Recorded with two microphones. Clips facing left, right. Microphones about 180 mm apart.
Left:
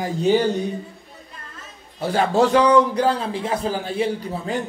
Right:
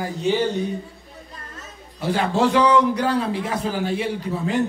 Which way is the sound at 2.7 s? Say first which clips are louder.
Left 2 dB; 30° left (ahead or behind).